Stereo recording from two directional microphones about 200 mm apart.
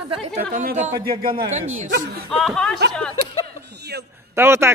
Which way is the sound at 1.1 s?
50° right (ahead or behind).